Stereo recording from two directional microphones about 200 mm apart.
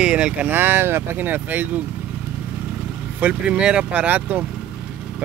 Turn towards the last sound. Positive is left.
turn(degrees=-10)  # may be behind; listen again after turning